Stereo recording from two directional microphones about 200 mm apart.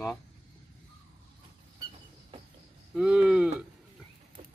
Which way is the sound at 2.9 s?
5° right (ahead or behind).